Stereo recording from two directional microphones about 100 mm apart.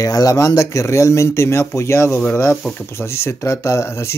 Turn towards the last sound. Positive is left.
turn(degrees=30)  # may be behind; listen again after turning